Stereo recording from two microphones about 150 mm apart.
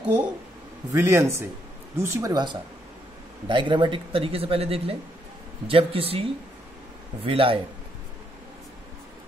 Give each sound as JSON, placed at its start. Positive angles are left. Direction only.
{"t": 0.9, "sound": "a man's voice", "side_deg": -15}